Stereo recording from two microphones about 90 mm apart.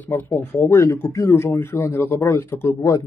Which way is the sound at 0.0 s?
25° left (ahead or behind).